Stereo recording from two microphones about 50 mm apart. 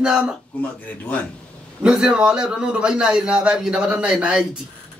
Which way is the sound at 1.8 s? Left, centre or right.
Centre.